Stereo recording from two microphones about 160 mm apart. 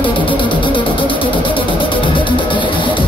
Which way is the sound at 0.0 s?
30° left (ahead or behind).